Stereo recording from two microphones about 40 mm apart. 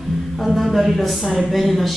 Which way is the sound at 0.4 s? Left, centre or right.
Centre.